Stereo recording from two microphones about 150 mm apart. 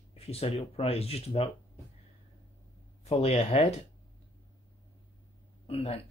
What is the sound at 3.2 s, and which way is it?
Speech, 45° left (ahead or behind).